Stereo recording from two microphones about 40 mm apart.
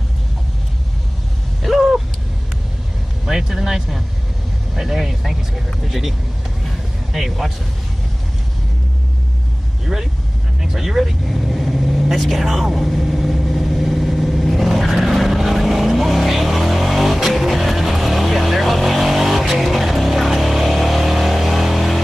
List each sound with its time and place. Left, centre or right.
1.6 s vehicle: centre
3.3 s vehicle: centre
5.9 s speech: centre
10.6 s speech: centre
11.2 s vehicle: centre